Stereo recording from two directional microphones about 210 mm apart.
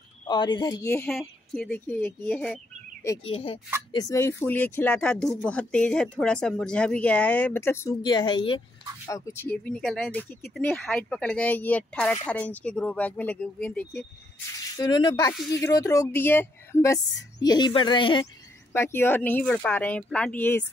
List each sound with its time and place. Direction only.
0.3 s speech: 20° left (ahead or behind)
3.3 s speech: 25° left (ahead or behind)
3.9 s speech: 15° left (ahead or behind)
14.8 s speech: 20° left (ahead or behind)
18.7 s speech: 10° left (ahead or behind)